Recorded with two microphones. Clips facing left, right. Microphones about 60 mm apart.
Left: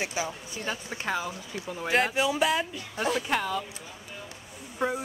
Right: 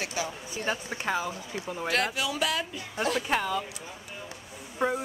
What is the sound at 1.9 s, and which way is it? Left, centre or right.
Speech, centre.